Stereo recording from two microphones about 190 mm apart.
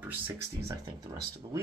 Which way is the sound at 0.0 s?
10° right (ahead or behind).